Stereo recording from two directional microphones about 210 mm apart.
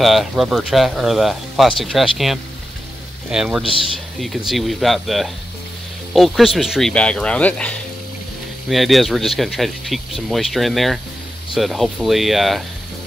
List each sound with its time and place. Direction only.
0.0 s speech: centre (ahead or behind)